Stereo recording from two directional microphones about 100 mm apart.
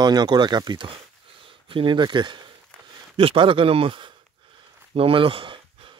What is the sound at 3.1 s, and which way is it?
Speech, 60° right (ahead or behind).